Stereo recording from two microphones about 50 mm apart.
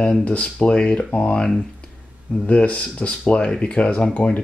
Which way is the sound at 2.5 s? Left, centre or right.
Left.